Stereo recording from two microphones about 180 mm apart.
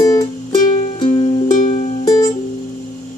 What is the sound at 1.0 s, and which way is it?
Music, 30° left (ahead or behind).